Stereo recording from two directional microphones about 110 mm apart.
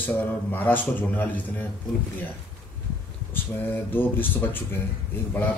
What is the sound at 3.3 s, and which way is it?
Speech, 20° left (ahead or behind).